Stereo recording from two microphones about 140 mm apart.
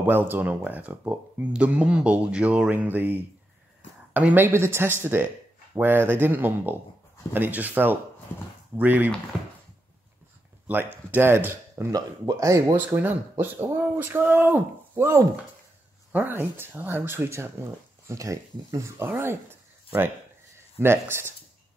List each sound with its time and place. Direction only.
0.0 s speech: 15° right (ahead or behind)
10.7 s a man's voice: 15° right (ahead or behind)
12.7 s speech: 10° right (ahead or behind)
20.5 s speech: 15° right (ahead or behind)